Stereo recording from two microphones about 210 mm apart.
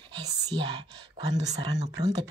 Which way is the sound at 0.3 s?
20° right (ahead or behind).